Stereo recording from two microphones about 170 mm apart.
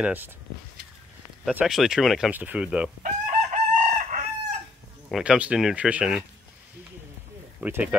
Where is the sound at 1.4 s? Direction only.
5° right (ahead or behind).